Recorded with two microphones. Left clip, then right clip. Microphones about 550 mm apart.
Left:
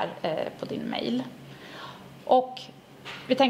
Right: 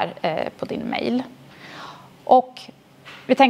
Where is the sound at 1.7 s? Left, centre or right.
Right.